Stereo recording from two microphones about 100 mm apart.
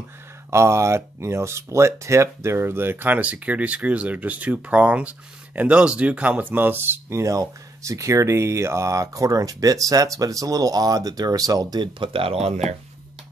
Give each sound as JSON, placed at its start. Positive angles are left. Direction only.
{"t": 0.5, "sound": "speech", "side_deg": -30}